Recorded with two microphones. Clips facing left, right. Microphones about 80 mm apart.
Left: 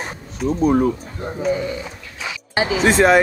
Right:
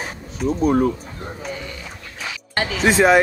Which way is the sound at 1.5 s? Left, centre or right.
Left.